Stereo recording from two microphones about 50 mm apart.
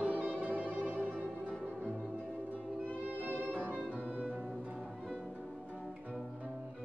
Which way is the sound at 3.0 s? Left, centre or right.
Right.